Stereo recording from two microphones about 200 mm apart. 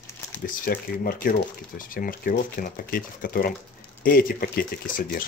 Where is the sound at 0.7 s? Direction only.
50° left (ahead or behind).